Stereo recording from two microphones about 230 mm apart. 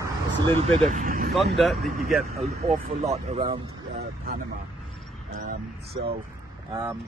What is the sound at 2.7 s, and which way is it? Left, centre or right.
Speech, right.